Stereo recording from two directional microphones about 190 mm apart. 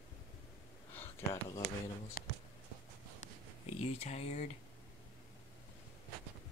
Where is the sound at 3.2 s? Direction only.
35° left (ahead or behind).